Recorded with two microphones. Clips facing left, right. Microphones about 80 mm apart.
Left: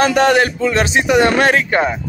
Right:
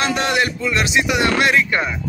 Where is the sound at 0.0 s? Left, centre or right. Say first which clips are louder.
Left 7 dB; left.